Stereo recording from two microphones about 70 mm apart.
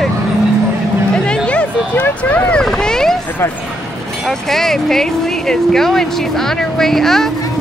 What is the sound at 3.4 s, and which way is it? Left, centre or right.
Speech, left.